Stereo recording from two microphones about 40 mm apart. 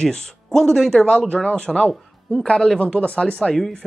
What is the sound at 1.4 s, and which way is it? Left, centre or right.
Speech, left.